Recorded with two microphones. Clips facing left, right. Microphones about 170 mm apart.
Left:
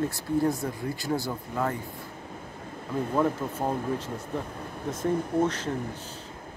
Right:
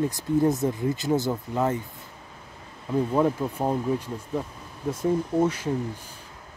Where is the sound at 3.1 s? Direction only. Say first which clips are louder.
Even; 15° right (ahead or behind).